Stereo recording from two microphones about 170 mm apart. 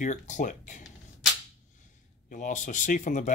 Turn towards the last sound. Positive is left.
turn(degrees=50)  # may be behind; listen again after turning